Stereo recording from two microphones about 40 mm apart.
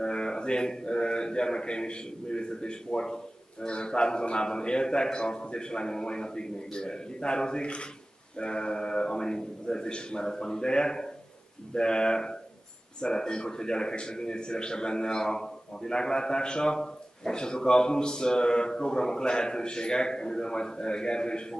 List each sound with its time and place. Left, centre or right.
0.0 s a man's voice: left